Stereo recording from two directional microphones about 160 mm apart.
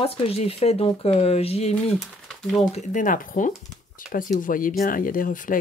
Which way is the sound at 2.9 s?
55° left (ahead or behind).